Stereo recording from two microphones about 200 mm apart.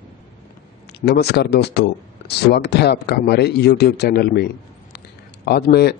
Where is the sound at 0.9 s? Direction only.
55° left (ahead or behind).